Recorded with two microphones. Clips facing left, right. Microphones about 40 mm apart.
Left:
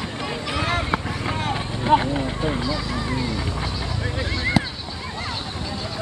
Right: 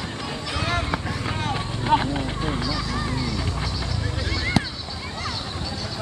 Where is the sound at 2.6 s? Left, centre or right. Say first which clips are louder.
Left 2 dB; left.